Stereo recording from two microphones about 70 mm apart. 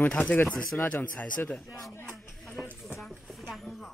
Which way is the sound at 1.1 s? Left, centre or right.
Centre.